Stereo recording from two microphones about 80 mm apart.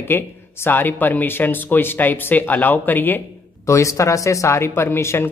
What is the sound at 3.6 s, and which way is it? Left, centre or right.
Speech, left.